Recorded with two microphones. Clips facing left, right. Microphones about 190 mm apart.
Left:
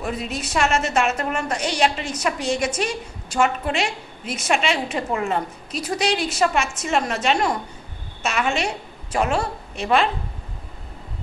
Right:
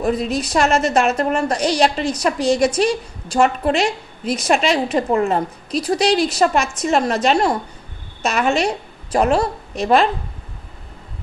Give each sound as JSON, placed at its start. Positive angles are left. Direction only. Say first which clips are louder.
{"t": 0.0, "sound": "a woman's voice", "louder": "right 8 dB", "side_deg": -35}